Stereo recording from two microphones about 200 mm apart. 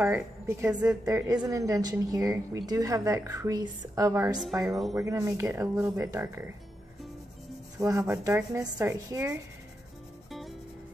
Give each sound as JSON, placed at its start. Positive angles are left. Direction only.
{"t": 0.0, "sound": "a woman's voice", "side_deg": -10}
{"t": 4.6, "sound": "speech", "side_deg": 0}
{"t": 4.9, "sound": "a woman's voice", "side_deg": -15}
{"t": 8.0, "sound": "a woman's voice", "side_deg": -10}